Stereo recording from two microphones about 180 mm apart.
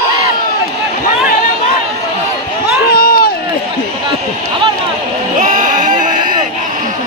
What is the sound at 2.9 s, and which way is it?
Run, 55° left (ahead or behind).